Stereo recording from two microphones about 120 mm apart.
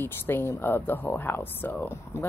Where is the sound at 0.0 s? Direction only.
20° left (ahead or behind).